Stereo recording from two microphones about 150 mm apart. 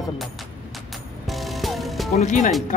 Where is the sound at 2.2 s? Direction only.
55° left (ahead or behind).